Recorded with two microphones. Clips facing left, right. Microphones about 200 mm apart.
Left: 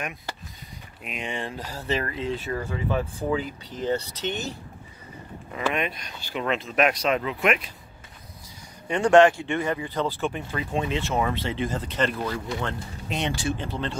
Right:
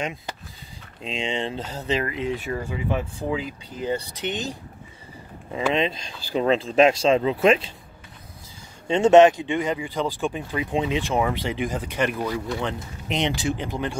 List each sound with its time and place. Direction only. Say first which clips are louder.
0.0 s speech: right 4 dB; 25° right (ahead or behind)
5.7 s speech: right 5 dB; 25° right (ahead or behind)
8.8 s speech: right 3 dB; 25° right (ahead or behind)